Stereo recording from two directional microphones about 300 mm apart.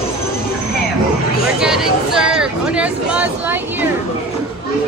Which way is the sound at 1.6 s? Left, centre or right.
Centre.